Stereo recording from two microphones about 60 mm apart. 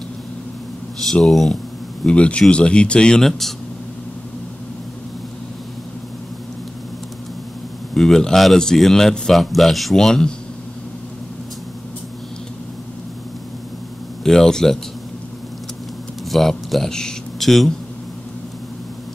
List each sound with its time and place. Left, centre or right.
1.2 s speech: centre
2.0 s a man's voice: centre
7.9 s a man's voice: centre
14.2 s a man's voice: centre
16.3 s speech: centre